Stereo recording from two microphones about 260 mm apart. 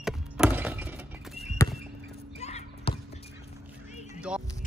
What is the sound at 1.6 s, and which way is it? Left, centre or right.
Basketball bounce, centre.